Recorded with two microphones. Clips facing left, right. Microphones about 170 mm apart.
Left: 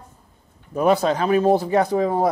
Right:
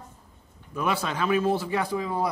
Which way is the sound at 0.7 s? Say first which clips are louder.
Left 9 dB; 40° left (ahead or behind).